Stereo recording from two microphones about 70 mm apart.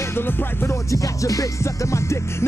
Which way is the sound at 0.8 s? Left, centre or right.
Left.